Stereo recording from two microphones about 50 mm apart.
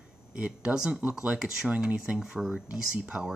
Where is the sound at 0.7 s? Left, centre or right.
Centre.